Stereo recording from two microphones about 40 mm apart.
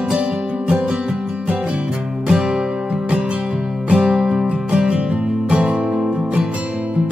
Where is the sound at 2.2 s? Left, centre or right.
Centre.